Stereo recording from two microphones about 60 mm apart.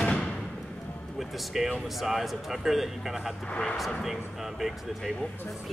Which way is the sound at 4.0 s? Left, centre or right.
Centre.